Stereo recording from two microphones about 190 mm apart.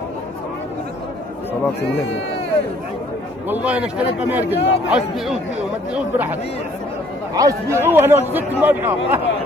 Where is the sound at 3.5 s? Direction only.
10° right (ahead or behind).